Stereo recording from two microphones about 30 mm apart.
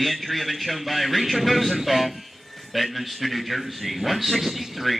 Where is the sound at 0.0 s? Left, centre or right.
Centre.